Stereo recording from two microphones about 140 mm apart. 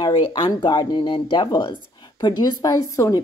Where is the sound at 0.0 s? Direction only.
35° left (ahead or behind).